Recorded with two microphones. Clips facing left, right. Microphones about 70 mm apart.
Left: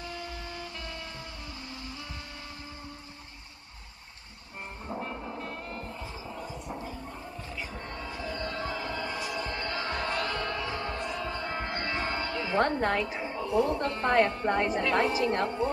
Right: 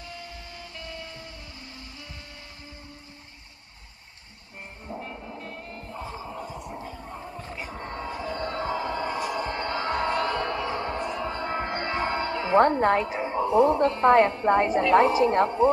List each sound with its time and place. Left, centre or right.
4.8 s music: centre
5.9 s a sound: right
7.4 s music: right
8.3 s a sound: right
11.1 s music: right
14.9 s a woman's voice: right